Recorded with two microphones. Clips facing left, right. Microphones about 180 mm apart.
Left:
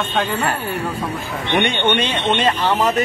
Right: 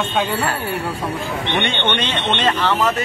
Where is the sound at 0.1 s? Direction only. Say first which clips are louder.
Even; 10° right (ahead or behind).